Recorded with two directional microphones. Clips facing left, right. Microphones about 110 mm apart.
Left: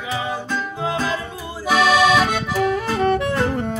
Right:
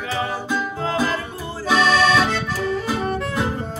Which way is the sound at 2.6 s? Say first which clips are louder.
Left 6 dB; 75° left (ahead or behind).